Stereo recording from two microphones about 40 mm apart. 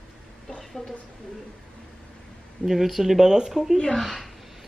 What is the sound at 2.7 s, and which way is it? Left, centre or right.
Speech, centre.